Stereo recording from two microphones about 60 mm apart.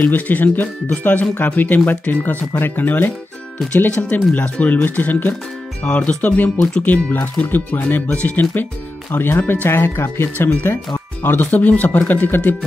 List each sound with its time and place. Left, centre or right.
0.0 s speech: left
4.1 s speech: left
6.6 s speech: centre
6.9 s speech: left